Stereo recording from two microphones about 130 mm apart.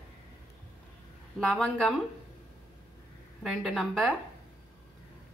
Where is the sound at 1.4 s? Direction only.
5° left (ahead or behind).